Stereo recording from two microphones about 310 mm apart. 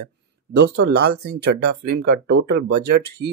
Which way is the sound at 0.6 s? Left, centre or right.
Right.